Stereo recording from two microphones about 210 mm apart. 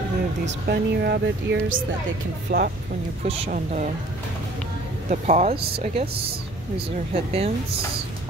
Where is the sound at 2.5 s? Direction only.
35° right (ahead or behind).